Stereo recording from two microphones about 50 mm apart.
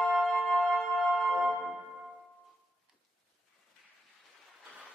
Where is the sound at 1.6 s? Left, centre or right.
Centre.